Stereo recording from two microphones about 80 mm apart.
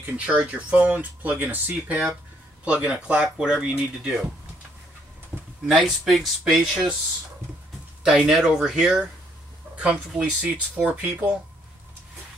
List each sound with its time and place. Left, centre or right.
0.0 s speech: centre
5.7 s speech: centre
8.0 s speech: centre